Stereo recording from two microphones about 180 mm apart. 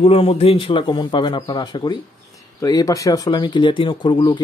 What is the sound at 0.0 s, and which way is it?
Speech, 30° left (ahead or behind).